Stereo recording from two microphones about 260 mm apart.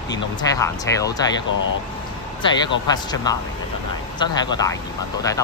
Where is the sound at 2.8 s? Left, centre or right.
Centre.